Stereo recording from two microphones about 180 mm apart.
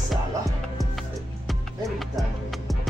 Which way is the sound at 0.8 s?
Centre (ahead or behind).